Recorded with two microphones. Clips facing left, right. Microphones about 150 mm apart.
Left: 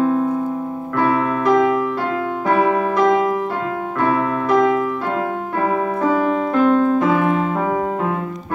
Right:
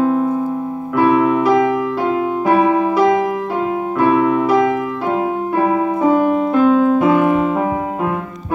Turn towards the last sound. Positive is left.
turn(degrees=-10)  # may be behind; listen again after turning